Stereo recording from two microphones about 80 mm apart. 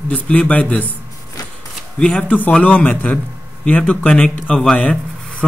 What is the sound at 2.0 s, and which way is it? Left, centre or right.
A man's voice, centre.